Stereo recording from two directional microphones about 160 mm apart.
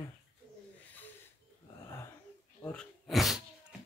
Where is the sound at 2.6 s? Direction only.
5° left (ahead or behind).